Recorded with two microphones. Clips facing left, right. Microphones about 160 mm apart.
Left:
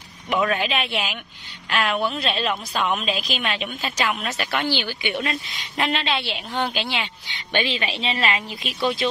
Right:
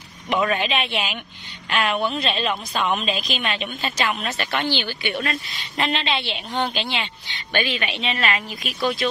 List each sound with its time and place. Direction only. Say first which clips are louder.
0.3 s a woman's voice: right 1 dB; centre (ahead or behind)
7.6 s a woman's voice: even; 30° left (ahead or behind)